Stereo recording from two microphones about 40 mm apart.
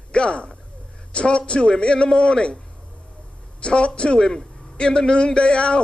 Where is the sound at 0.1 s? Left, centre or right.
Left.